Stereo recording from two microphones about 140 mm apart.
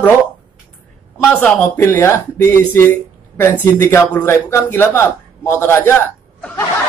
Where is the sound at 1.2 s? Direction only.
5° left (ahead or behind).